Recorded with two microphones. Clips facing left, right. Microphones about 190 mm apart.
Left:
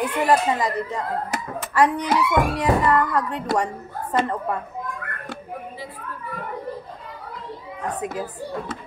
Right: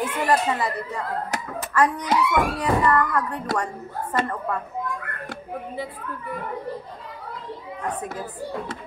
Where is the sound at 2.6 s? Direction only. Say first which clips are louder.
Left 1 dB; 20° left (ahead or behind).